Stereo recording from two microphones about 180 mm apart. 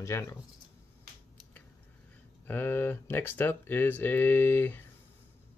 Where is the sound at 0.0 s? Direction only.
15° left (ahead or behind).